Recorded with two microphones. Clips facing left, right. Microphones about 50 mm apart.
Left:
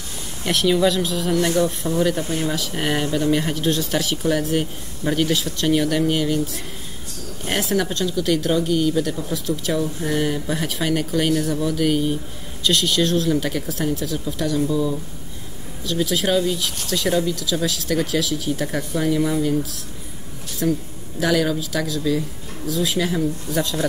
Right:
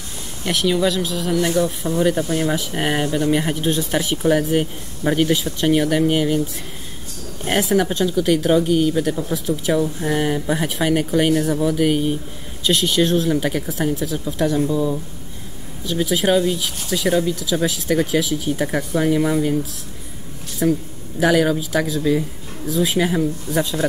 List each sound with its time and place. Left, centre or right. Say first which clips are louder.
0.4 s speech: left 1 dB; centre
2.2 s speech: right 3 dB; right
20.6 s speech: right 3 dB; centre